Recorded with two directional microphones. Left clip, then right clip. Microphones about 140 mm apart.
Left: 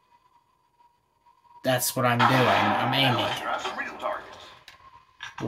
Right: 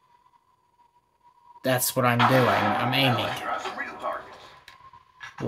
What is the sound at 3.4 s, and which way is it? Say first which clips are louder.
Music: left 1 dB; 10° left (ahead or behind).